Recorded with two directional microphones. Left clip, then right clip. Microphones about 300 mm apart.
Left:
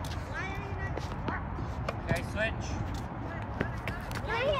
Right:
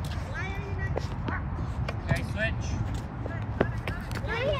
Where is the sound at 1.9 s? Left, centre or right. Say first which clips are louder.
Even; centre.